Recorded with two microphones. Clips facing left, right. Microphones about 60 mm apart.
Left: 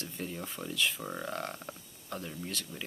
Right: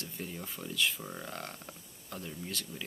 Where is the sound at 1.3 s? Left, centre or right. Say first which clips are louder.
Left 5 dB; centre.